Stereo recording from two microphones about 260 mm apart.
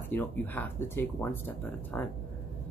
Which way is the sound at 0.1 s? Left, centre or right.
Centre.